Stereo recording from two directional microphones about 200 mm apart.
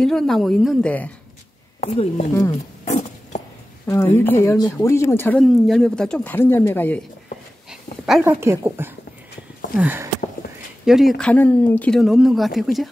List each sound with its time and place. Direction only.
0.0 s speech: centre (ahead or behind)
1.8 s speech: 35° left (ahead or behind)
2.8 s a sound: 35° left (ahead or behind)
3.8 s speech: 15° left (ahead or behind)
8.0 s speech: 5° right (ahead or behind)